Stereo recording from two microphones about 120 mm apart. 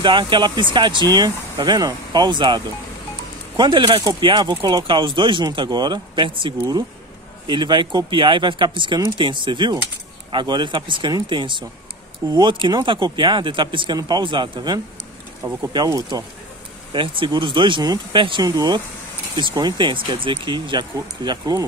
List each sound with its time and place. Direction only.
0.0 s speech: 40° right (ahead or behind)
16.9 s speech: 45° right (ahead or behind)
18.4 s speech: 35° right (ahead or behind)